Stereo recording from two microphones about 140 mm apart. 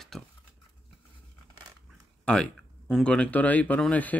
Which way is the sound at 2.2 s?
5° left (ahead or behind).